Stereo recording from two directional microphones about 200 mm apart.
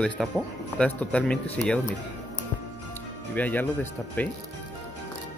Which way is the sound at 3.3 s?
10° left (ahead or behind).